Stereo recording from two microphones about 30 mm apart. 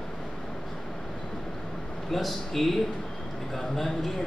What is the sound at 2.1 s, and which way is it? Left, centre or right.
A man's voice, centre.